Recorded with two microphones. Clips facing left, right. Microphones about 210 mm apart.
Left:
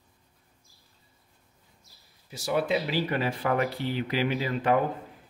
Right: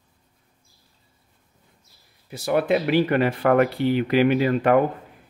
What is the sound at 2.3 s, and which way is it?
Speech, 60° right (ahead or behind).